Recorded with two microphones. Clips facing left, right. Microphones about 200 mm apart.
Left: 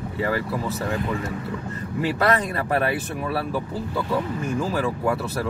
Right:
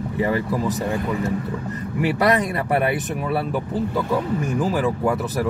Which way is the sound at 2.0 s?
15° right (ahead or behind).